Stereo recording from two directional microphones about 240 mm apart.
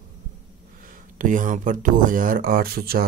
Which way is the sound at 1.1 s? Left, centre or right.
Right.